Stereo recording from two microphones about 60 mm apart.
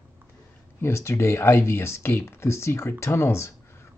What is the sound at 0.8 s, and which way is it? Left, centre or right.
Speech, left.